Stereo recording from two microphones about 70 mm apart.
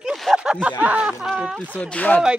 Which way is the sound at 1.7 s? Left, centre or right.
Centre.